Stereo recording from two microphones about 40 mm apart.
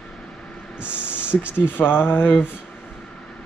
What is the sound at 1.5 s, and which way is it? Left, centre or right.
Speech, left.